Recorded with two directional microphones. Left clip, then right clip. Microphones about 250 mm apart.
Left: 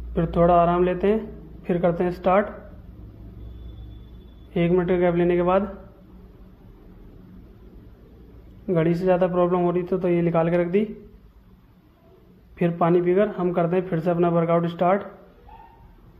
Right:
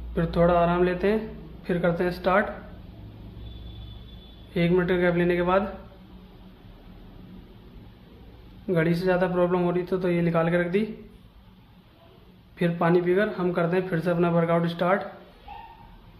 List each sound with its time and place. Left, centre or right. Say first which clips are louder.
0.1 s speech: left 3 dB; centre
4.6 s speech: left 2 dB; centre
8.6 s speech: left 3 dB; centre
12.5 s speech: left 2 dB; centre